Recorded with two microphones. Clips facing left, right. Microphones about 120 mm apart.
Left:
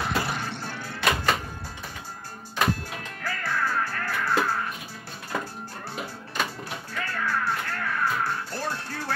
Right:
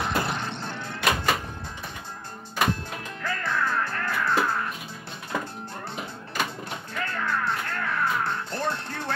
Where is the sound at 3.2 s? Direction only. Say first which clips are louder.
Right 1 dB; 20° right (ahead or behind).